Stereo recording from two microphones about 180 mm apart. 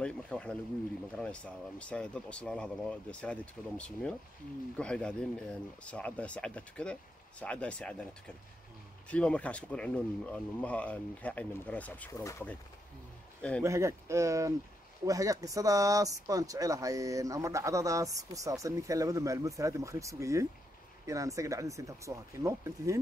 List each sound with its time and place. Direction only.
0.0 s speech: 5° left (ahead or behind)
9.1 s speech: 5° left (ahead or behind)
13.6 s speech: 15° right (ahead or behind)